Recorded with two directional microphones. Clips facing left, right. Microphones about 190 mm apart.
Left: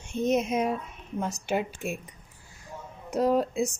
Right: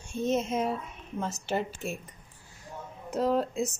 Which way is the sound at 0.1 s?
15° left (ahead or behind).